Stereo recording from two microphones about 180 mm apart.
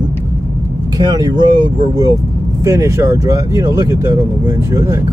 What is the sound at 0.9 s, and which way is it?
Speech, 20° right (ahead or behind).